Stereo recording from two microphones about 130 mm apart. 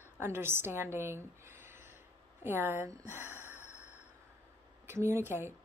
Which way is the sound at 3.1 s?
15° right (ahead or behind).